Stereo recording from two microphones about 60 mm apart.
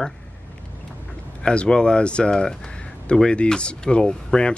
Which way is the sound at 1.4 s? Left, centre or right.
Centre.